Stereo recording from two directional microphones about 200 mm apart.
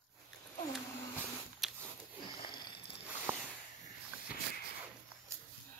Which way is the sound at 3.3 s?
10° right (ahead or behind).